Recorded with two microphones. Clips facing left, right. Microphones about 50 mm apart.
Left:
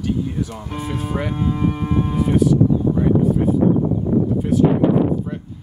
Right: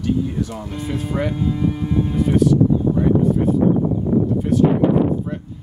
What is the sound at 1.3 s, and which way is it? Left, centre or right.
Speech, left.